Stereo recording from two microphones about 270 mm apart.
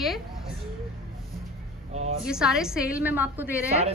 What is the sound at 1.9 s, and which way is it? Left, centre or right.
Speech, right.